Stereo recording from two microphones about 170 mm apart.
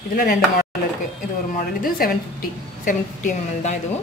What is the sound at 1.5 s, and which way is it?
A woman's voice, 60° left (ahead or behind).